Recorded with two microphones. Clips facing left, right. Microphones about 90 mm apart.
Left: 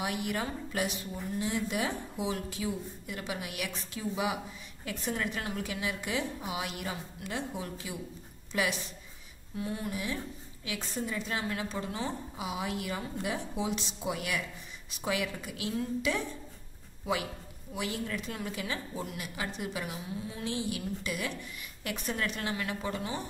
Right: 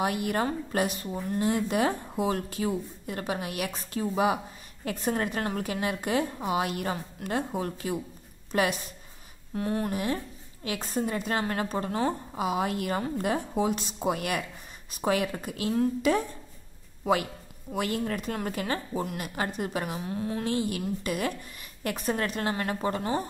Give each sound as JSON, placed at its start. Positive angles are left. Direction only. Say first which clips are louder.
{"t": 0.0, "sound": "a woman's voice", "louder": "right 6 dB", "side_deg": -45}